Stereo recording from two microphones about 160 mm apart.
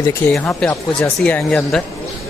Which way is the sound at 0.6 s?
5° left (ahead or behind).